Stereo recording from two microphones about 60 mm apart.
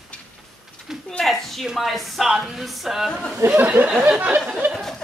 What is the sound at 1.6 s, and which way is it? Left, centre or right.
Speech, centre.